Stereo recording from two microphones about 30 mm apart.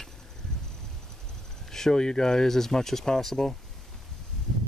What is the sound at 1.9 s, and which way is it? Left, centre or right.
Speech, left.